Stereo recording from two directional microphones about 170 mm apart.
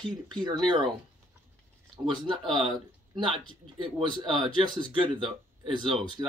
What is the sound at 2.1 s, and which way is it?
Speech, 30° right (ahead or behind).